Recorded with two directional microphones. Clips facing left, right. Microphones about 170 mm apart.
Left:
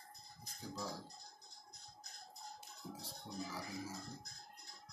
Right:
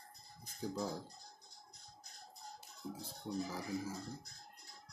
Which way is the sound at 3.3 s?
50° right (ahead or behind).